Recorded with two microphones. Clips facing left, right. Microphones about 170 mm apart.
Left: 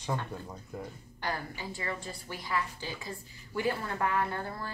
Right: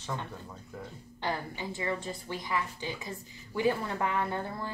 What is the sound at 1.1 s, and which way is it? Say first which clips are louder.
A woman's voice: right 2 dB; 20° right (ahead or behind).